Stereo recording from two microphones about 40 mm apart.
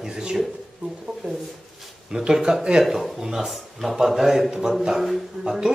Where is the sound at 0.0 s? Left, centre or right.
Centre.